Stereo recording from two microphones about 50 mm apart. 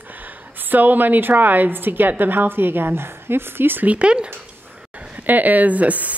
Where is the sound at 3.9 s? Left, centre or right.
Right.